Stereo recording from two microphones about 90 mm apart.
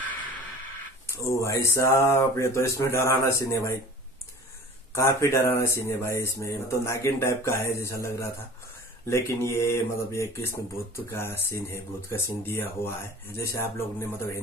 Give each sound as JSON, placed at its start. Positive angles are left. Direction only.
{"t": 1.0, "sound": "speech", "side_deg": 35}
{"t": 4.9, "sound": "speech", "side_deg": 30}